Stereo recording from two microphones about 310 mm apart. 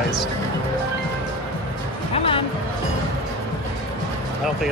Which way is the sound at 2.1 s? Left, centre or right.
Centre.